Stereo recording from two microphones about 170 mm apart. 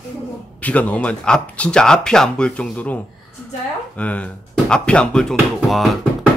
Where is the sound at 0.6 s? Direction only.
10° left (ahead or behind).